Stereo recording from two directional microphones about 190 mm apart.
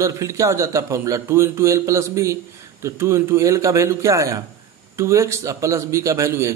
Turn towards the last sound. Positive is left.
turn(degrees=-15)  # may be behind; listen again after turning